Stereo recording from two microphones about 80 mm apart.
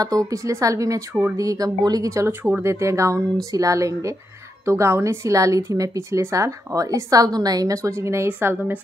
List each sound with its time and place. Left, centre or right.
0.3 s a woman's voice: right
2.0 s a woman's voice: right